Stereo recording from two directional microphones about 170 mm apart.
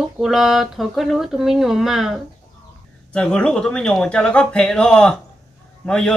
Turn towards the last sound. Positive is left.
turn(degrees=5)  # may be behind; listen again after turning